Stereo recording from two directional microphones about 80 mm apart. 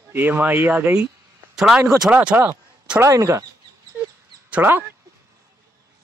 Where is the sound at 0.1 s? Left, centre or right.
Right.